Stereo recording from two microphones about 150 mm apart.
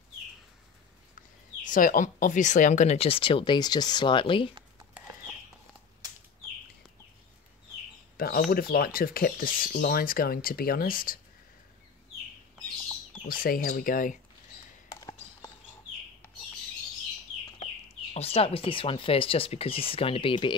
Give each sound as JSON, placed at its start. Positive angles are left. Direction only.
{"t": 1.7, "sound": "speech", "side_deg": 65}
{"t": 8.2, "sound": "speech", "side_deg": 85}
{"t": 13.3, "sound": "speech", "side_deg": 75}
{"t": 18.1, "sound": "speech", "side_deg": 40}